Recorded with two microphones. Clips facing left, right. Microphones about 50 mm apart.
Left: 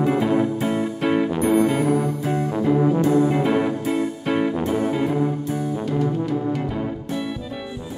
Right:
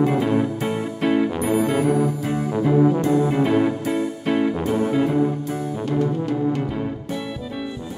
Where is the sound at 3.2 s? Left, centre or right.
Centre.